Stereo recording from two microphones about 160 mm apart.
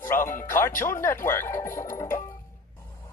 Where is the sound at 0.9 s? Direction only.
15° left (ahead or behind).